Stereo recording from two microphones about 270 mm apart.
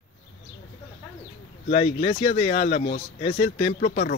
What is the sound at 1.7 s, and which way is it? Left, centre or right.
Speech, left.